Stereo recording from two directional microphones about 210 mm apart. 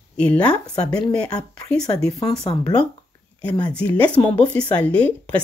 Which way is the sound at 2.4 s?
20° left (ahead or behind).